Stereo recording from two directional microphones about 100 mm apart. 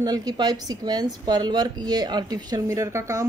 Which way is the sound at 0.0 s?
40° right (ahead or behind).